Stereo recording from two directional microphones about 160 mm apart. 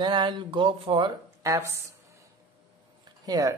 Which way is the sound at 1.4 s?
20° right (ahead or behind).